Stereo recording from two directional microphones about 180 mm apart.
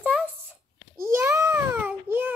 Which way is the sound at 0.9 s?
15° right (ahead or behind).